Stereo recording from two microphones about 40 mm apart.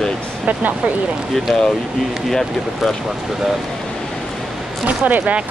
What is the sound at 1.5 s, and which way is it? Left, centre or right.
Speech, centre.